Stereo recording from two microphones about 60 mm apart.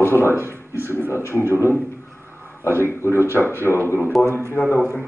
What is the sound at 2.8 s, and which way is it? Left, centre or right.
Speech, left.